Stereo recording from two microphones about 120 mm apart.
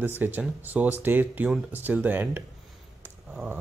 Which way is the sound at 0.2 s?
15° right (ahead or behind).